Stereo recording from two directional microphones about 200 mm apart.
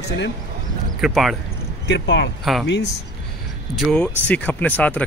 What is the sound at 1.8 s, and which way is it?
Speech, 65° left (ahead or behind).